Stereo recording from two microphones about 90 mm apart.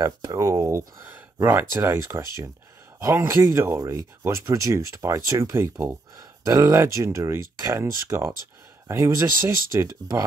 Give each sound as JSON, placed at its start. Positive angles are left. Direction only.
{"t": 0.0, "sound": "speech", "side_deg": -45}
{"t": 6.4, "sound": "speech", "side_deg": -45}